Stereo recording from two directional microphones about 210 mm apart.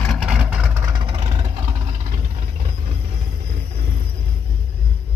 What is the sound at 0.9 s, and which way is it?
Vehicle, 20° right (ahead or behind).